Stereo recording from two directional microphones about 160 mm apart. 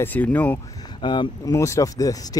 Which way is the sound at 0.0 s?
10° left (ahead or behind).